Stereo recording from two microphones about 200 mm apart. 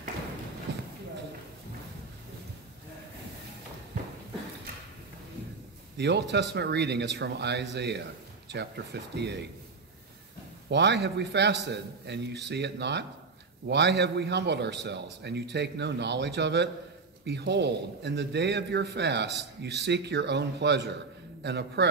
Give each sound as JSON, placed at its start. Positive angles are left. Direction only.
{"t": 5.9, "sound": "a man's voice", "side_deg": -60}
{"t": 10.7, "sound": "a man's voice", "side_deg": -60}